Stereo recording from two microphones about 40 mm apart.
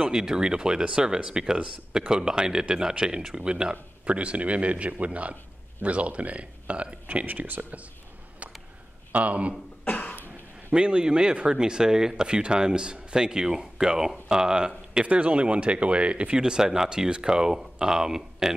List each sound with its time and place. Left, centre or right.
0.0 s a man's voice: centre; by 7.5 s right
9.1 s a man's voice: right
9.8 s cough: left
10.7 s speech: right